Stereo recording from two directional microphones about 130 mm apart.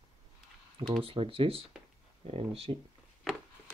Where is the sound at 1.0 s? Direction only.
45° right (ahead or behind).